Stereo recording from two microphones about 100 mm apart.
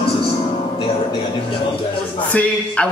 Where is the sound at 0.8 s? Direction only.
60° left (ahead or behind).